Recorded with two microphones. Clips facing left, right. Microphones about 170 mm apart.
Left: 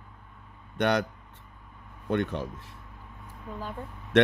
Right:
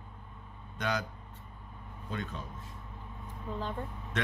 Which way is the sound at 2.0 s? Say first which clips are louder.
Left 11 dB; 70° left (ahead or behind).